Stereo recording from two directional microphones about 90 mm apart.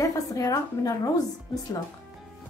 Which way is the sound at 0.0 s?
40° left (ahead or behind).